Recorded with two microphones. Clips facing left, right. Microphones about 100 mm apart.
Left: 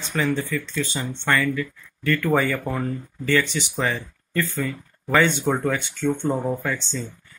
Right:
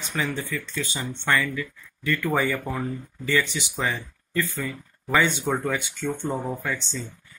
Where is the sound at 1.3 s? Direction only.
20° right (ahead or behind).